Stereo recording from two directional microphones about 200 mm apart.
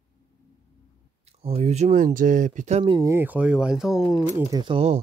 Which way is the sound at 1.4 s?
30° right (ahead or behind).